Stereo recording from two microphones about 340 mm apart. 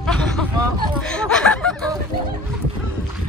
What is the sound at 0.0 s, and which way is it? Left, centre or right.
Vehicle, centre.